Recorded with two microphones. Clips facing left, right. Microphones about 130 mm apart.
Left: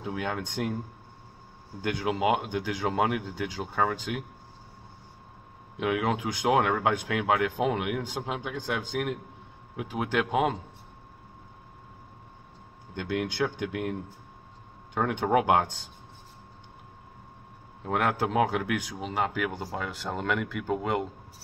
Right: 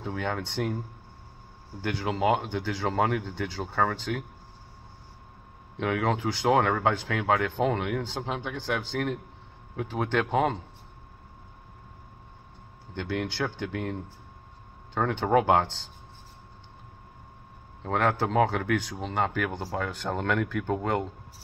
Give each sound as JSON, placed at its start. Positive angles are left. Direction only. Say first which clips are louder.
{"t": 0.0, "sound": "speech", "louder": "right 1 dB", "side_deg": 10}
{"t": 1.8, "sound": "speech", "louder": "even", "side_deg": 15}
{"t": 5.8, "sound": "speech", "louder": "even", "side_deg": 10}
{"t": 12.9, "sound": "speech", "louder": "left 1 dB", "side_deg": 15}
{"t": 15.0, "sound": "speech", "louder": "right 1 dB", "side_deg": 10}
{"t": 17.8, "sound": "a man's voice", "louder": "right 1 dB", "side_deg": 10}